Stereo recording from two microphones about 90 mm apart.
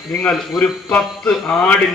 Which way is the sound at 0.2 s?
10° left (ahead or behind).